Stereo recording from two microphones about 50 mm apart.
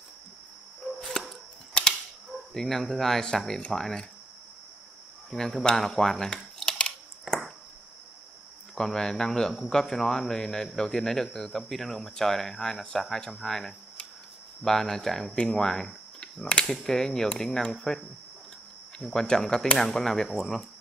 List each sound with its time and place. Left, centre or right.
0.8 s arrow: centre
1.7 s a sound: centre
2.5 s speech: centre
5.3 s speech: centre
8.7 s speech: centre